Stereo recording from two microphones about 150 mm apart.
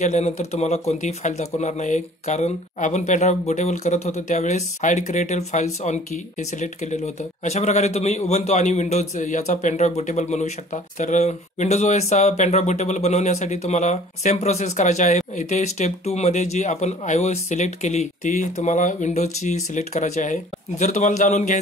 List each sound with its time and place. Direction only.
0.0 s a man's voice: 50° left (ahead or behind)
7.4 s a man's voice: 45° left (ahead or behind)